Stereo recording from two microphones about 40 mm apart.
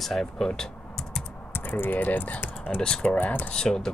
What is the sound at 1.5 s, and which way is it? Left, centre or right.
Speech, left.